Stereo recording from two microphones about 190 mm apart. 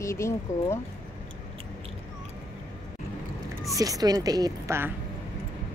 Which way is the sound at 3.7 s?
20° right (ahead or behind).